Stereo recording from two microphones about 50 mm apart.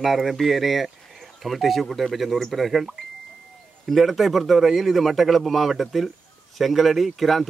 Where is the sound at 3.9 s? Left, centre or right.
Centre.